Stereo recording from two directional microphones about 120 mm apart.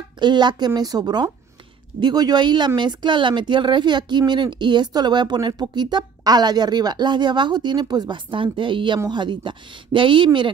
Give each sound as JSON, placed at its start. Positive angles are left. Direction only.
{"t": 0.2, "sound": "speech", "side_deg": -40}